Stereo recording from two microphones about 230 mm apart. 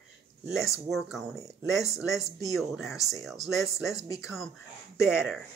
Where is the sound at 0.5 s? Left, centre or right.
Centre.